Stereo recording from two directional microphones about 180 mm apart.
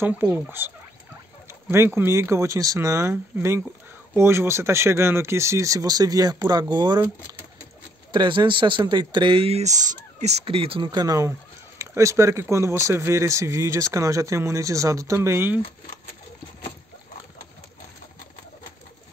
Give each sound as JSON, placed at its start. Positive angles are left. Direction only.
{"t": 0.0, "sound": "speech", "side_deg": -10}
{"t": 8.1, "sound": "speech", "side_deg": -25}